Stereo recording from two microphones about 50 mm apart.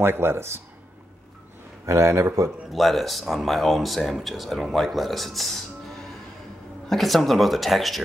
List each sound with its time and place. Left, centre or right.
0.0 s speech: right
1.9 s speech: right
2.7 s speech: centre